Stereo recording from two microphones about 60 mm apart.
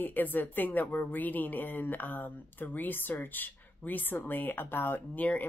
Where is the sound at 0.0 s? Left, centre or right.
Left.